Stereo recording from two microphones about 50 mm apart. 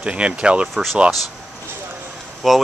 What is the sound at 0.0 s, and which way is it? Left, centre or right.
Speech, right.